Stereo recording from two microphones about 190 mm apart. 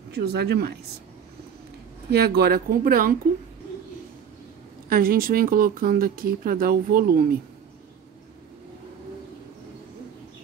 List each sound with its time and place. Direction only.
0.1 s speech: 60° right (ahead or behind)
2.0 s speech: 55° right (ahead or behind)
4.8 s speech: 50° right (ahead or behind)